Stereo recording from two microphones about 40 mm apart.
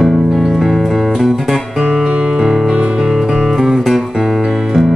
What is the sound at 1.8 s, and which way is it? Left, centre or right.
Music, centre.